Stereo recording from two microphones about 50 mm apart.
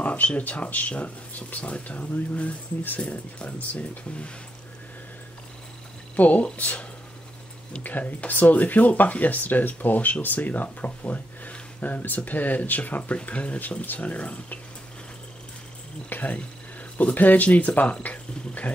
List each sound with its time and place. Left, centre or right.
0.0 s speech: left
6.1 s speech: left
16.1 s speech: left